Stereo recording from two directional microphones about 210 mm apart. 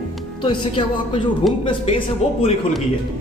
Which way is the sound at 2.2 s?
30° left (ahead or behind).